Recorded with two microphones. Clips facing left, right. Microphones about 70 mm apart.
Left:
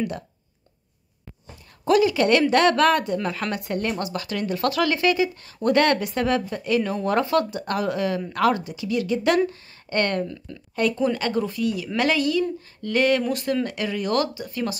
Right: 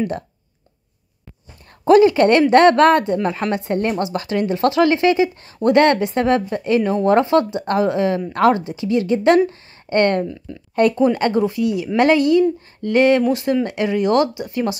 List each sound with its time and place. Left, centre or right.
1.9 s a woman's voice: right
10.8 s speech: right